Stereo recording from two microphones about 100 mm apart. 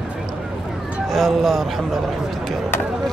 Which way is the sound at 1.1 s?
Centre (ahead or behind).